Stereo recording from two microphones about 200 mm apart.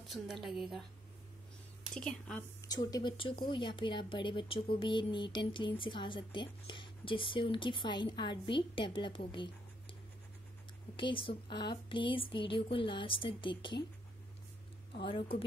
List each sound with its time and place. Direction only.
0.0 s a woman's voice: centre (ahead or behind)
2.0 s a woman's voice: 5° left (ahead or behind)
2.7 s speech: 20° left (ahead or behind)
11.0 s speech: 25° left (ahead or behind)
15.0 s speech: 25° left (ahead or behind)